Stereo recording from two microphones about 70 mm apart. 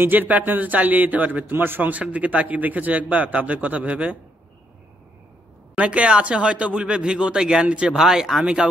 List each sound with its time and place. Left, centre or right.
0.0 s a man's voice: right
5.8 s a man's voice: centre